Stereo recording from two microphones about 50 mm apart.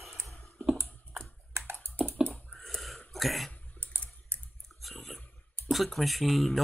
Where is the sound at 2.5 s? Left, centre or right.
Centre.